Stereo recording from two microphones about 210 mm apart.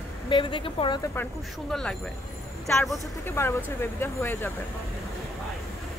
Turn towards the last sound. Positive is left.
turn(degrees=10)  # may be behind; listen again after turning